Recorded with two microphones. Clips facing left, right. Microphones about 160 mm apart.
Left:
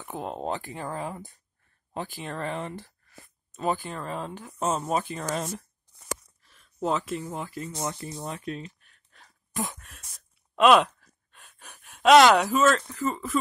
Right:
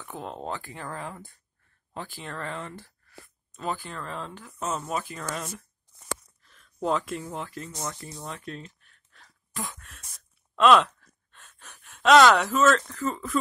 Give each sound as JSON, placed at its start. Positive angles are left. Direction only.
{"t": 0.0, "sound": "speech", "side_deg": 15}
{"t": 4.6, "sound": "speech", "side_deg": 25}
{"t": 6.4, "sound": "speech", "side_deg": 5}